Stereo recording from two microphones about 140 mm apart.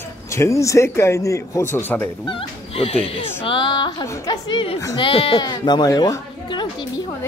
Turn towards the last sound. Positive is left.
turn(degrees=35)  # may be behind; listen again after turning